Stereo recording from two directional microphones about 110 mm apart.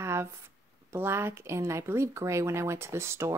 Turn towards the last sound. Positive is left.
turn(degrees=-25)  # may be behind; listen again after turning